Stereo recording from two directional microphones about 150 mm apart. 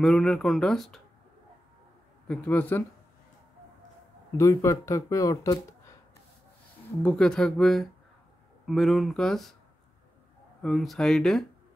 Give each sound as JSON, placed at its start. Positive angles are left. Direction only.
{"t": 0.0, "sound": "speech", "side_deg": 5}
{"t": 2.2, "sound": "speech", "side_deg": 10}
{"t": 4.4, "sound": "speech", "side_deg": 20}
{"t": 7.0, "sound": "speech", "side_deg": 5}
{"t": 10.6, "sound": "speech", "side_deg": 0}